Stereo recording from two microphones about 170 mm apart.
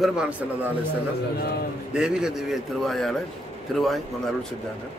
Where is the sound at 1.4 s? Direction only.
65° left (ahead or behind).